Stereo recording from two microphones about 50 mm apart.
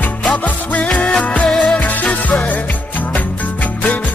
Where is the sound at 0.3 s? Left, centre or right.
Left.